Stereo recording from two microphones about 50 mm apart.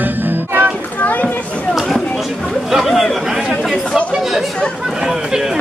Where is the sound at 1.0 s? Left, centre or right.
Left.